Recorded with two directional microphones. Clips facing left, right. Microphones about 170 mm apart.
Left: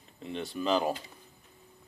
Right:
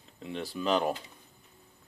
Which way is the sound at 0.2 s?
Centre (ahead or behind).